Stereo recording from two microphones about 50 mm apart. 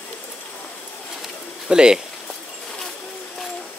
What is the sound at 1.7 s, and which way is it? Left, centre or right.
Speech, centre.